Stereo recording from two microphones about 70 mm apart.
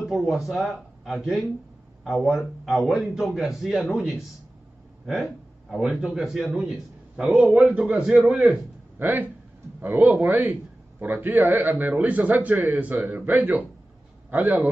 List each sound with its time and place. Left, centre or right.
0.1 s a man's voice: centre
7.7 s a man's voice: centre